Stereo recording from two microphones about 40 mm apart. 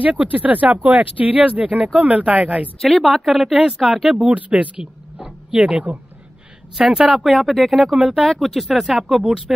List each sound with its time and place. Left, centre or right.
0.0 s speech: right
2.8 s speech: centre
4.3 s speech: right
5.5 s speech: right
7.1 s speech: centre
7.9 s speech: centre
8.4 s speech: centre
9.1 s speech: centre